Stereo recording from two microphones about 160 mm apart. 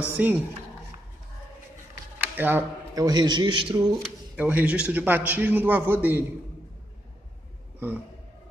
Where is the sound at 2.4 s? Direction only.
15° right (ahead or behind); by 3.8 s 30° right (ahead or behind).